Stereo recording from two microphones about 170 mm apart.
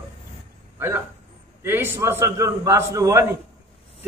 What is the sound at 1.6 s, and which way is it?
A man's voice, 10° right (ahead or behind).